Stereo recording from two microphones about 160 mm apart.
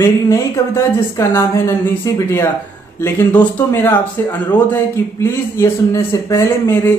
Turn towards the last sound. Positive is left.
turn(degrees=15)  # may be behind; listen again after turning